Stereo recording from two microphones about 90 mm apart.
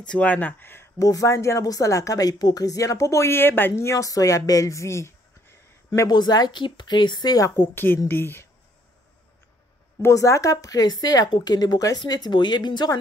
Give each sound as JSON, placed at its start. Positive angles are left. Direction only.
{"t": 0.0, "sound": "speech", "side_deg": 15}
{"t": 0.9, "sound": "a woman's voice", "side_deg": 40}
{"t": 5.9, "sound": "a woman's voice", "side_deg": 45}
{"t": 7.5, "sound": "speech", "side_deg": 25}
{"t": 10.0, "sound": "a woman's voice", "side_deg": 35}
{"t": 11.2, "sound": "speech", "side_deg": 60}
{"t": 11.5, "sound": "a woman's voice", "side_deg": 45}